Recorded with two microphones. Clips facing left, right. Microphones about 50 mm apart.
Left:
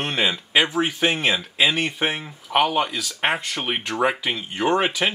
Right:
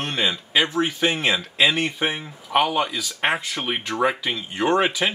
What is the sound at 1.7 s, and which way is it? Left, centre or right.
Speech, left.